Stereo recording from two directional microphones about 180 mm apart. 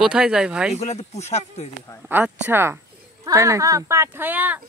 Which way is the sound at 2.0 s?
10° right (ahead or behind).